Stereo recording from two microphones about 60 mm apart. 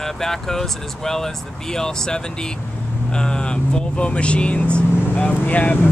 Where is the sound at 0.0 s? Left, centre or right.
Centre.